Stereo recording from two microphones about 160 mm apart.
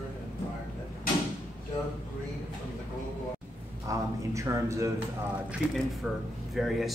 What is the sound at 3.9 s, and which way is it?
A man's voice, 20° right (ahead or behind).